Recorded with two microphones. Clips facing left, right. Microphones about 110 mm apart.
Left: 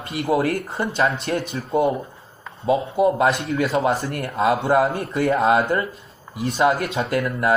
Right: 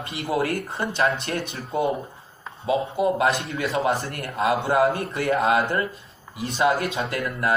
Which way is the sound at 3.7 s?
30° left (ahead or behind).